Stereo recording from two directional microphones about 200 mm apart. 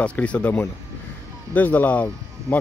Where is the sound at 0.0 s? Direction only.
5° left (ahead or behind).